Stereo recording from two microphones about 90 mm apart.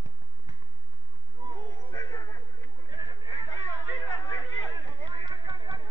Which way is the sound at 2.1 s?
55° left (ahead or behind).